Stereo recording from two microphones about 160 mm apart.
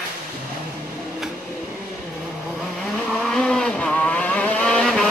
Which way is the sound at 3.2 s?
5° left (ahead or behind).